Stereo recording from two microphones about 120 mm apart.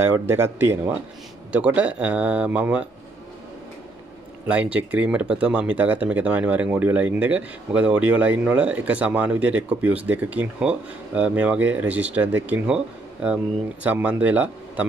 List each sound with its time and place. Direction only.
0.0 s speech: 20° right (ahead or behind)
4.5 s speech: 10° right (ahead or behind)